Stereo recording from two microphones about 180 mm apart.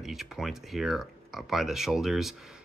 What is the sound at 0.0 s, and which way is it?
Speech, centre (ahead or behind).